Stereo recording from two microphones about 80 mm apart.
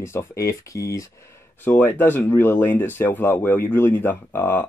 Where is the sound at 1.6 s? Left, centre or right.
Left.